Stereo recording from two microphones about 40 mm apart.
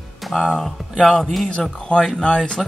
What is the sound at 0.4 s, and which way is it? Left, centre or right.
Speech, centre.